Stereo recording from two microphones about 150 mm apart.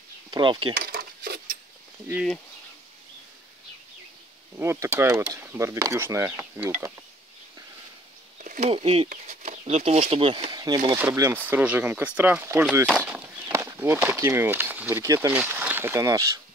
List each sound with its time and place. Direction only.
0.3 s speech: 30° right (ahead or behind)
0.7 s a sound: 75° right (ahead or behind)
2.1 s speech: 5° left (ahead or behind)
4.6 s speech: 15° right (ahead or behind)
8.4 s speech: 50° right (ahead or behind)
9.1 s speech: 50° right (ahead or behind); by 10.8 s 25° right (ahead or behind)
11.1 s speech: 15° right (ahead or behind)
13.0 s a sound: 15° right (ahead or behind)
15.0 s speech: 15° right (ahead or behind)